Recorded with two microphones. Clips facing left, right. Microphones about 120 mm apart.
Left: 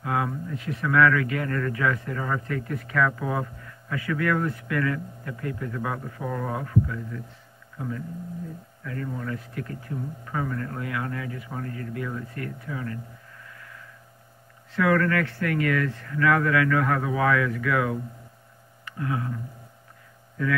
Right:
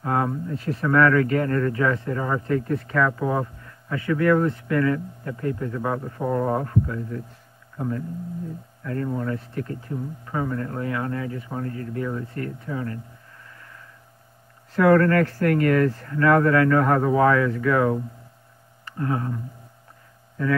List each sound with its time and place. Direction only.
0.0 s speech: 35° right (ahead or behind)
9.0 s speech: 30° right (ahead or behind)
14.7 s speech: 45° right (ahead or behind)